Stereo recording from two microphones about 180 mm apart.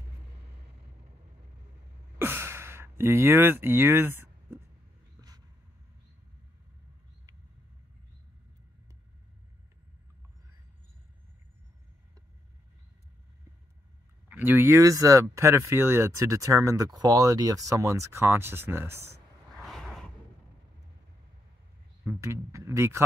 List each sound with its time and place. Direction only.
2.1 s gasp: 10° right (ahead or behind)
14.3 s speech: 10° right (ahead or behind)
19.5 s a sound: centre (ahead or behind)
22.0 s speech: 15° right (ahead or behind)